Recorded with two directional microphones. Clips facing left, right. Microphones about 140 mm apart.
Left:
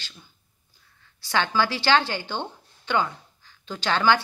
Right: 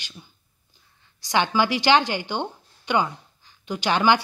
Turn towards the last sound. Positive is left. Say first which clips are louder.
# right 2 dB
turn(degrees=-15)  # may be behind; listen again after turning